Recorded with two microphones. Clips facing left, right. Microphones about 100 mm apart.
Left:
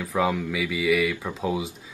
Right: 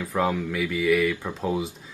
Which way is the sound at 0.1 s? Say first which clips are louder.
Left 1 dB; centre (ahead or behind).